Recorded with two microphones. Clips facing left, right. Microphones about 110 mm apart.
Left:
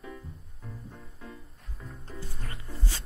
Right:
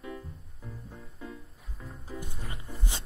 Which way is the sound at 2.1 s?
15° right (ahead or behind).